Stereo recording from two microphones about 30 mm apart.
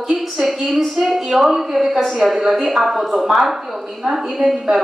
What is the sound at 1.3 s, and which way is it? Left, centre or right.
A woman's voice, centre.